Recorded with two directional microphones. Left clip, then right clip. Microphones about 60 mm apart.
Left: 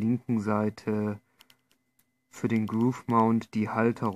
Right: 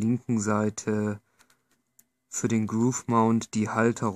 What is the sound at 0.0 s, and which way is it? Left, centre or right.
Speech, centre.